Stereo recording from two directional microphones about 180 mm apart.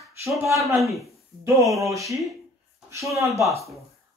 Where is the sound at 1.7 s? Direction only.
15° right (ahead or behind).